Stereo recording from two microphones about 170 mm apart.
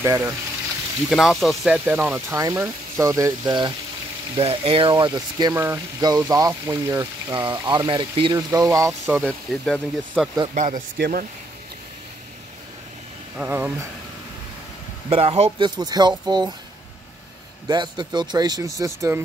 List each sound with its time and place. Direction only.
0.0 s speech: 15° right (ahead or behind)
1.1 s speech: centre (ahead or behind); by 9.2 s 15° right (ahead or behind)
9.2 s speech: 5° left (ahead or behind)
10.5 s a man's voice: 50° right (ahead or behind)
13.4 s speech: 10° right (ahead or behind)
15.0 s speech: 35° right (ahead or behind)
15.7 s speech: 25° right (ahead or behind)
17.6 s speech: 25° right (ahead or behind)